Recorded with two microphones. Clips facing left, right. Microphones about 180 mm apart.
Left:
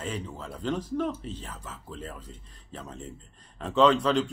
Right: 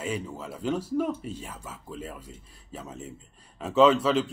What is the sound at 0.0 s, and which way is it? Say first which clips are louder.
Speech: right 3 dB; 10° right (ahead or behind).